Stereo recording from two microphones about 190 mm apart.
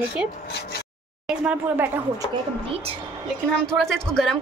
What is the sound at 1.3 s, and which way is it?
Speech, 5° right (ahead or behind).